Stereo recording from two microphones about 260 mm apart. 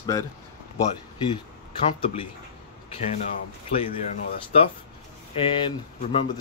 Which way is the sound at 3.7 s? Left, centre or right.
Left.